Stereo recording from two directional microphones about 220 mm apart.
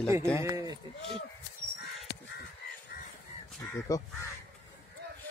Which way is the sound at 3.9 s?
15° left (ahead or behind).